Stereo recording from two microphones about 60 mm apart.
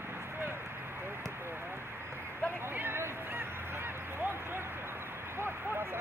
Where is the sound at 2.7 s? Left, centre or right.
Right.